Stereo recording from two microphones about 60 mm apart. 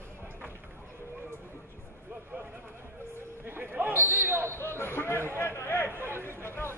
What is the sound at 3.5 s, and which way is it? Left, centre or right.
Basketball bounce, right.